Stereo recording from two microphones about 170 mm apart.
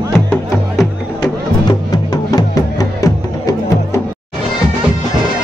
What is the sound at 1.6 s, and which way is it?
Music, 25° left (ahead or behind).